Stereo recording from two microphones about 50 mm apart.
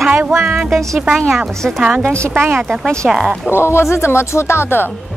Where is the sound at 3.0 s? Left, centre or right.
Centre.